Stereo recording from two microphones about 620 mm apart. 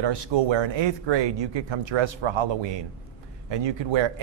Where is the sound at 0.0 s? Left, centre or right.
Right.